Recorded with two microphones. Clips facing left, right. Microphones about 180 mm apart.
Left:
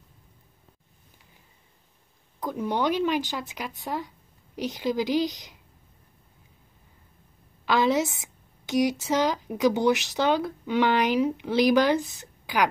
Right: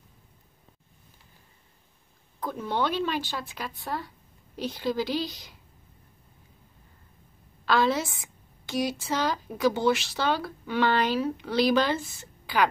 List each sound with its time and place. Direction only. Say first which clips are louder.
2.4 s a woman's voice: left 2 dB; 15° left (ahead or behind)
7.6 s a woman's voice: left 2 dB; 15° left (ahead or behind)